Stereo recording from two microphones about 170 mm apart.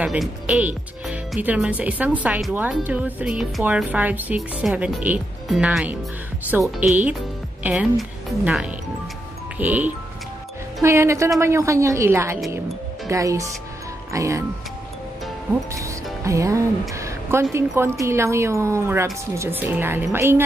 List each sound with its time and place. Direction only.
0.0 s speech: 5° right (ahead or behind)
15.7 s music: 20° right (ahead or behind)
16.9 s speech: 15° right (ahead or behind)